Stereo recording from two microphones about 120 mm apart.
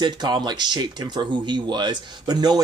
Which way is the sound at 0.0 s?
35° right (ahead or behind).